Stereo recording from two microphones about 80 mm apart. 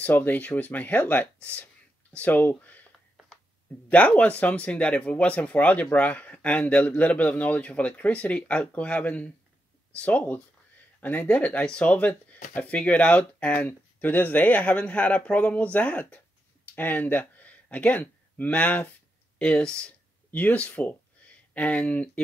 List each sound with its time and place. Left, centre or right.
0.0 s speech: left
3.9 s speech: centre
16.6 s a sound: left
18.4 s speech: centre